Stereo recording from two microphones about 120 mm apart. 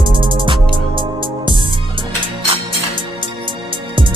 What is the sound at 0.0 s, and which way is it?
Music, 45° right (ahead or behind).